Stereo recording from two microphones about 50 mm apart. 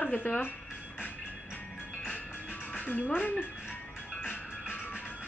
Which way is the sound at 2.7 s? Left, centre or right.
Left.